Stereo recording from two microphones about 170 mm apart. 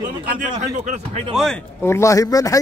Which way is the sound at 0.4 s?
50° right (ahead or behind).